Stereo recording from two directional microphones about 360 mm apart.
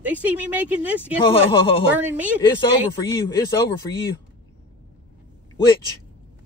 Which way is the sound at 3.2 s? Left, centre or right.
Centre.